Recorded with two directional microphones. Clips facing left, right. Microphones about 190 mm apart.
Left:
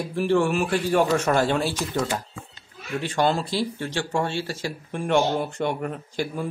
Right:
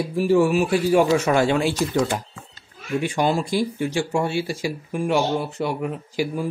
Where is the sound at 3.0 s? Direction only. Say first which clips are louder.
Right 1 dB; 10° right (ahead or behind).